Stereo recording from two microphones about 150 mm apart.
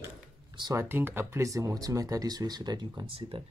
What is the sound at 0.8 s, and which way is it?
Speech, 15° right (ahead or behind).